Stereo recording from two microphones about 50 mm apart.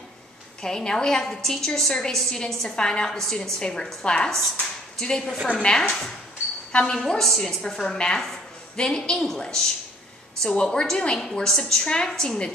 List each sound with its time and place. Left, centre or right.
0.6 s a woman's voice: centre
7.0 s a woman's voice: centre